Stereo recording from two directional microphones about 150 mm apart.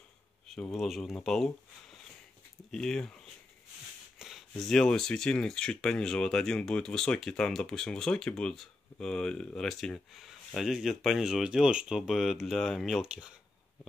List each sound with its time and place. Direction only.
0.5 s speech: centre (ahead or behind)
4.2 s speech: centre (ahead or behind)